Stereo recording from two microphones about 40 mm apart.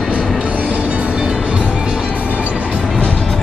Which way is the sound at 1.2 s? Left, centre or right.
Right.